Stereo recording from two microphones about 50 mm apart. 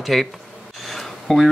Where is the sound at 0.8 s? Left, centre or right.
Centre.